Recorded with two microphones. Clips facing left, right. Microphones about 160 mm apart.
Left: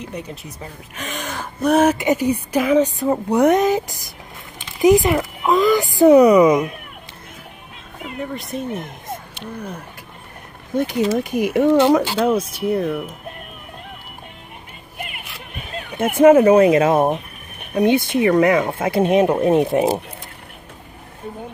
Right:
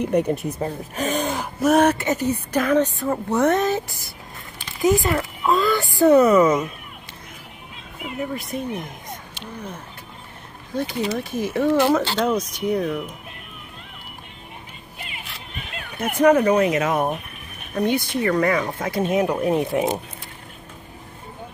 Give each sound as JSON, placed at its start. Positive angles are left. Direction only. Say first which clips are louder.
{"t": 0.0, "sound": "speech", "louder": "right 11 dB", "side_deg": -55}
{"t": 0.6, "sound": "speech", "louder": "right 8 dB", "side_deg": -40}
{"t": 1.4, "sound": "speech", "louder": "left 2 dB", "side_deg": 0}
{"t": 1.9, "sound": "speech", "louder": "left 3 dB", "side_deg": 10}
{"t": 8.0, "sound": "speech", "louder": "even", "side_deg": 0}
{"t": 10.7, "sound": "speech", "louder": "left 6 dB", "side_deg": 20}
{"t": 15.0, "sound": "music", "louder": "left 5 dB", "side_deg": 55}
{"t": 16.0, "sound": "speech", "louder": "left 5 dB", "side_deg": 25}